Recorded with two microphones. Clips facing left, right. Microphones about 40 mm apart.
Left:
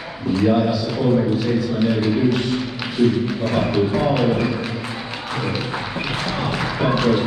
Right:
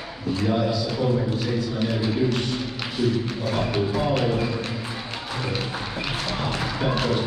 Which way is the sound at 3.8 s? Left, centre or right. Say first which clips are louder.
Left 5 dB; left.